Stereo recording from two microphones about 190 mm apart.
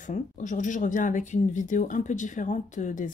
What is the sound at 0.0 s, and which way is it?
Speech, 40° left (ahead or behind).